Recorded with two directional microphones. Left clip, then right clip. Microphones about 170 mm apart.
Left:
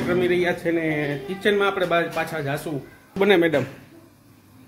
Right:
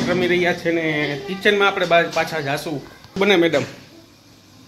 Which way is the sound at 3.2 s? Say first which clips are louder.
Right 2 dB; 20° left (ahead or behind).